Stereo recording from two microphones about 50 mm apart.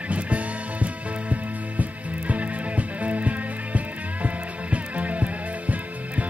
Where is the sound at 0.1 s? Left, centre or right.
Right.